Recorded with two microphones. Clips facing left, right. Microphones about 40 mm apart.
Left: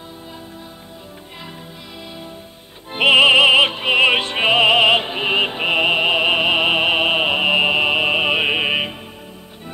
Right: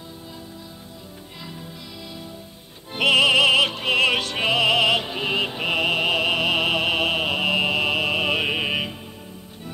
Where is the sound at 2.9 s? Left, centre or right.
Left.